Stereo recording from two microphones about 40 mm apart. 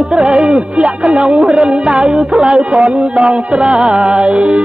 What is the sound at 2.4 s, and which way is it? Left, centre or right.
Music, centre.